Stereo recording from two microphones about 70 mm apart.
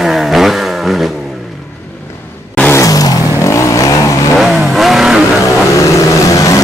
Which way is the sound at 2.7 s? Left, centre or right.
Left.